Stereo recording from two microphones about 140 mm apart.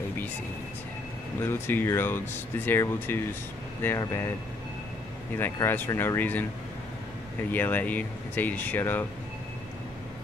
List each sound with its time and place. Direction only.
1.4 s speech: 15° left (ahead or behind)
5.4 s speech: 15° left (ahead or behind)
7.5 s speech: 15° left (ahead or behind)